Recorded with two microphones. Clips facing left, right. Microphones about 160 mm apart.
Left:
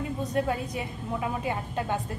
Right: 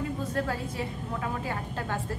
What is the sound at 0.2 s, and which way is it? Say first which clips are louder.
A woman's voice: left 3 dB; 20° left (ahead or behind).